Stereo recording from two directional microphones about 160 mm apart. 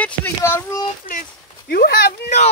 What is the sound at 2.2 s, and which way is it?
Speech, 45° left (ahead or behind).